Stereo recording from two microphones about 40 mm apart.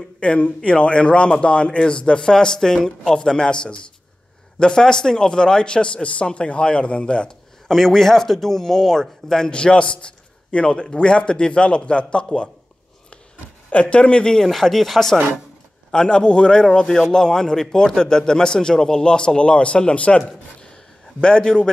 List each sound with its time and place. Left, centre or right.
0.2 s a man's voice: left
7.6 s speech: centre
9.5 s a man's voice: left
13.7 s speech: left; by 15.1 s centre
15.9 s a man's voice: left
20.6 s a sound: left